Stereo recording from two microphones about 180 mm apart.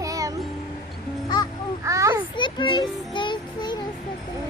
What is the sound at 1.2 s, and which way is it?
Music, 20° left (ahead or behind).